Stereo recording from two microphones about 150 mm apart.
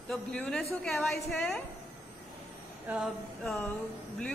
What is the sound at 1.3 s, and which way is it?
Speech, 10° left (ahead or behind).